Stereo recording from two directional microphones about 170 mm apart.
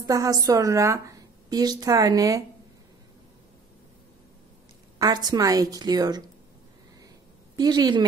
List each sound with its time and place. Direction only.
0.0 s a woman's voice: 20° right (ahead or behind)
4.9 s a woman's voice: 25° right (ahead or behind)
7.5 s a woman's voice: 25° right (ahead or behind)